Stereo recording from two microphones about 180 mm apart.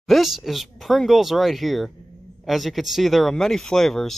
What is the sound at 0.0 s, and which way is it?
A man's voice, centre (ahead or behind).